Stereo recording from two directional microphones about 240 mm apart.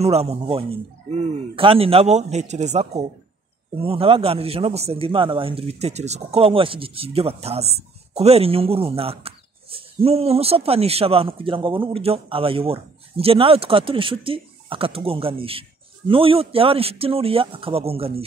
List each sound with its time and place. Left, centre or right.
0.0 s speech: right